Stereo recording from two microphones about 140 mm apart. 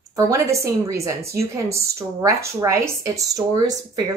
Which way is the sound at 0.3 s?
20° right (ahead or behind).